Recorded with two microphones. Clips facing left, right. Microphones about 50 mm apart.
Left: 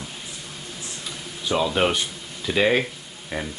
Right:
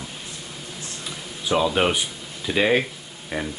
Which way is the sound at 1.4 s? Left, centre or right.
Centre.